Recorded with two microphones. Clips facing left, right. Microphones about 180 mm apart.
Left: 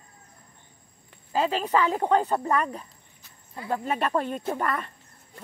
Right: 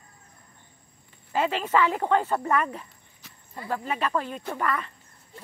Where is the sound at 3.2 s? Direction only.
75° right (ahead or behind).